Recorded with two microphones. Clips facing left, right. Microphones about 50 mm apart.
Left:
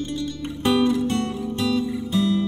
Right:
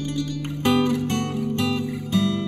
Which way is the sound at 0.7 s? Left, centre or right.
Right.